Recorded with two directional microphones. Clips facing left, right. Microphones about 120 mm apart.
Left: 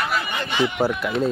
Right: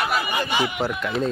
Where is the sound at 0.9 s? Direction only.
Centre (ahead or behind).